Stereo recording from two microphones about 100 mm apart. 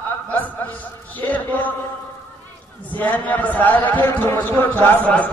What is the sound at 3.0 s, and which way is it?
A man's voice, 15° left (ahead or behind).